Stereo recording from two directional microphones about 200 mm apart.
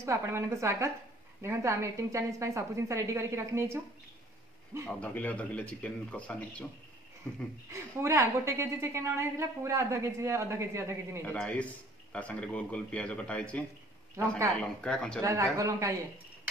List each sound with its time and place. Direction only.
0.0 s a woman's voice: 15° right (ahead or behind)
4.8 s a man's voice: 10° left (ahead or behind)
8.0 s a woman's voice: 15° right (ahead or behind)
11.2 s a man's voice: 5° left (ahead or behind)
15.2 s a woman's voice: 15° right (ahead or behind)